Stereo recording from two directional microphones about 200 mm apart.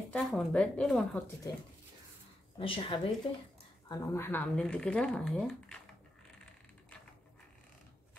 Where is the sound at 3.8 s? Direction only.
15° left (ahead or behind).